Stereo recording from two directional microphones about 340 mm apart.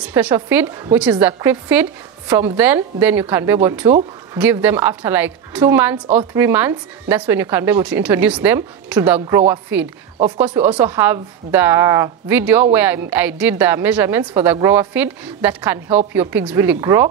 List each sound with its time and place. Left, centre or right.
0.0 s a woman's voice: centre
10.1 s a woman's voice: centre